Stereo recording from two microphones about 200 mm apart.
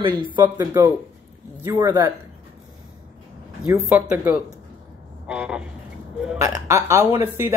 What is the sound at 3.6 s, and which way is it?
Speech, 10° right (ahead or behind).